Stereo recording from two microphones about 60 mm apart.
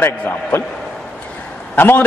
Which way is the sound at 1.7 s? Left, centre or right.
Left.